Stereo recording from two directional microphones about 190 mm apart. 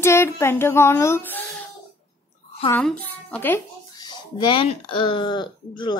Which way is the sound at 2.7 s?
5° left (ahead or behind).